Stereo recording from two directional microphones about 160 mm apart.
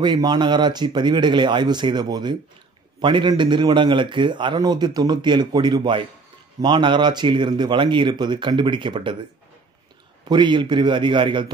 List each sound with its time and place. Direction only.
0.0 s a man's voice: 25° right (ahead or behind)
10.2 s a man's voice: 30° right (ahead or behind)